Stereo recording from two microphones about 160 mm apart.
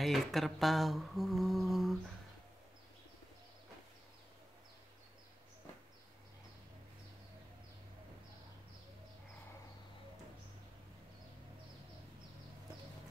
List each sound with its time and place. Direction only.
0.0 s humming: centre (ahead or behind)